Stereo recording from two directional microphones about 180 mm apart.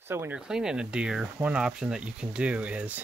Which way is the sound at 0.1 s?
10° right (ahead or behind).